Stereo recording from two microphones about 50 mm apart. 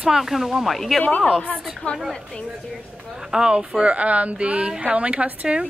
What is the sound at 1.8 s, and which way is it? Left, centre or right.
Speech, left.